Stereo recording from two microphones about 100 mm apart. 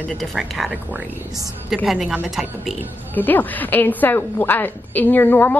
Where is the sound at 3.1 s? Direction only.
20° left (ahead or behind).